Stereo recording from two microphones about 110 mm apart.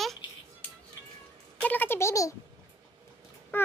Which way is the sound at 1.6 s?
15° left (ahead or behind).